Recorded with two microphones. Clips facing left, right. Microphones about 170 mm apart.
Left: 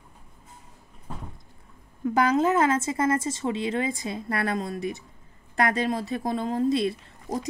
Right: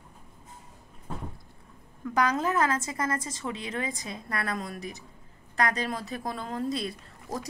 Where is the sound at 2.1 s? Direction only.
25° left (ahead or behind).